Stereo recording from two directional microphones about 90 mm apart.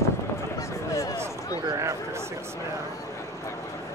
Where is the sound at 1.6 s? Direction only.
35° right (ahead or behind).